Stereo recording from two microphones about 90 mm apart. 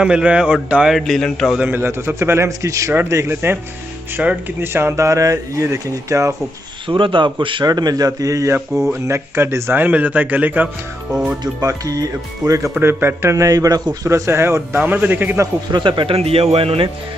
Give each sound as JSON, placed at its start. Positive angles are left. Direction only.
{"t": 0.0, "sound": "speech", "side_deg": -10}
{"t": 0.9, "sound": "speech", "side_deg": 0}
{"t": 1.6, "sound": "a man's voice", "side_deg": -25}
{"t": 4.2, "sound": "speech", "side_deg": -20}
{"t": 6.9, "sound": "a man's voice", "side_deg": -70}
{"t": 7.6, "sound": "a man's voice", "side_deg": -50}
{"t": 11.6, "sound": "speech", "side_deg": -40}
{"t": 12.7, "sound": "speech", "side_deg": -25}
{"t": 14.0, "sound": "a man's voice", "side_deg": -35}
{"t": 14.8, "sound": "a man's voice", "side_deg": -15}
{"t": 15.7, "sound": "speech", "side_deg": -65}